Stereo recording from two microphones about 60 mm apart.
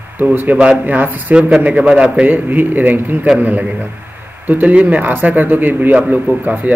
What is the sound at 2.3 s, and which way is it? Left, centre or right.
A man's voice, right.